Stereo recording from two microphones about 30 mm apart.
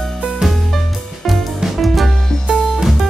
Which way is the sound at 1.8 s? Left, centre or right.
Centre.